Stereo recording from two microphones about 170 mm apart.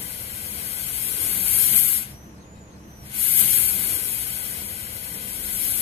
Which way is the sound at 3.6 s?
35° right (ahead or behind).